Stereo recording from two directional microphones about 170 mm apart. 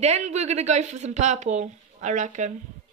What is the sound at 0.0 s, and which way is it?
A woman's voice, 40° right (ahead or behind).